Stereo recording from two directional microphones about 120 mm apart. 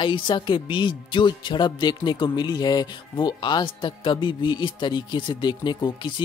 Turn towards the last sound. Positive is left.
turn(degrees=40)  # may be behind; listen again after turning